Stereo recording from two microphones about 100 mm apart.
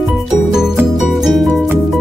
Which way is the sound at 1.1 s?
Centre (ahead or behind).